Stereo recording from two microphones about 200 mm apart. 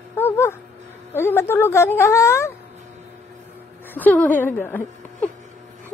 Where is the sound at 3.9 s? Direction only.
10° left (ahead or behind).